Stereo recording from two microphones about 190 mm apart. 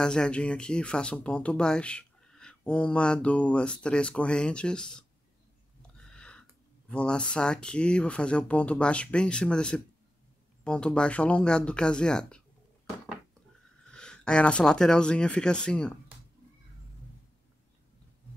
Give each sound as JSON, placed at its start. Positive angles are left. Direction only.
{"t": 0.0, "sound": "speech", "side_deg": 5}
{"t": 5.8, "sound": "a sound", "side_deg": 5}
{"t": 6.9, "sound": "speech", "side_deg": 5}
{"t": 13.8, "sound": "speech", "side_deg": 5}